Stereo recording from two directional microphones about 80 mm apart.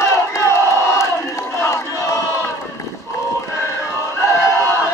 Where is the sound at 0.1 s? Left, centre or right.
Left.